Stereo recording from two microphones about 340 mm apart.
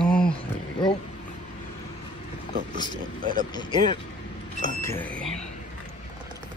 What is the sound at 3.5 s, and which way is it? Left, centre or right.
Speech, centre.